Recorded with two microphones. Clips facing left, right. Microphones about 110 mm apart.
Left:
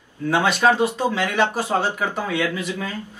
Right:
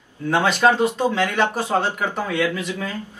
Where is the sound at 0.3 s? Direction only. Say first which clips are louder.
Right 1 dB; 10° left (ahead or behind).